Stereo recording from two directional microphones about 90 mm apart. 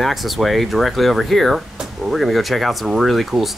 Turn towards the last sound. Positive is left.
turn(degrees=0)  # may be behind; listen again after turning